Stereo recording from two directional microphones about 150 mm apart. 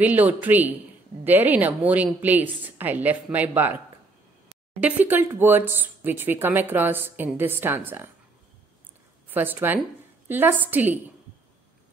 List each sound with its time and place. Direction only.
0.0 s speech: 10° right (ahead or behind)
4.8 s speech: 15° right (ahead or behind)
9.3 s speech: 10° right (ahead or behind)